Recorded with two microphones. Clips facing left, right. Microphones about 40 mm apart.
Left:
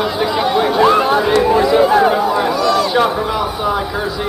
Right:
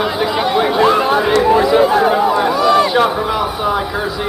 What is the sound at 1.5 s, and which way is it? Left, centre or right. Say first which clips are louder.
Speech: right 1 dB; centre.